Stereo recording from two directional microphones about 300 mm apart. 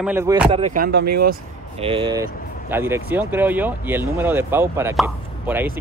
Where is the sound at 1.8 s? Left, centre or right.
Centre.